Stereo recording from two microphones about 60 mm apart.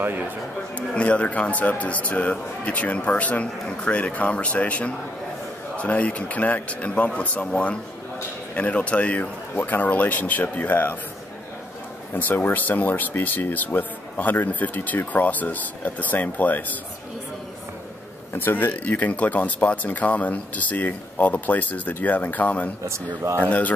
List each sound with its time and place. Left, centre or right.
0.0 s speech: right
0.7 s speech: left
12.1 s speech: left
18.3 s speech: left
22.8 s speech: right
23.4 s speech: left